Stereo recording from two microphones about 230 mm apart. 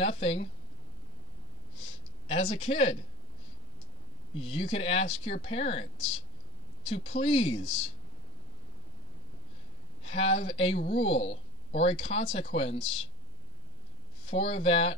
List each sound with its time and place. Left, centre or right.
0.0 s speech: left
2.2 s speech: left
4.4 s speech: left
6.9 s speech: left
10.0 s speech: left
14.2 s speech: left